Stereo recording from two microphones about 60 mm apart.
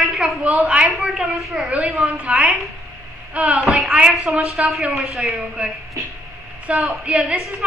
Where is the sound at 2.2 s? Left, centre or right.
Centre.